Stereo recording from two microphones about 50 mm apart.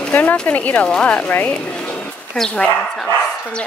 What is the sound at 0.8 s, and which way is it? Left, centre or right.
Speech, centre.